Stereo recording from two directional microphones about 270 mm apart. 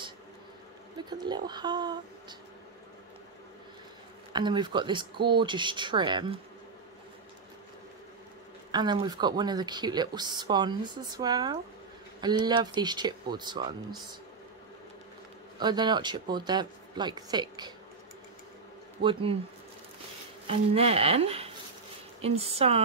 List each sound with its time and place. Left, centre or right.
1.1 s speech: centre
4.3 s speech: centre
8.7 s speech: centre
15.6 s speech: centre
19.0 s speech: right
20.4 s speech: right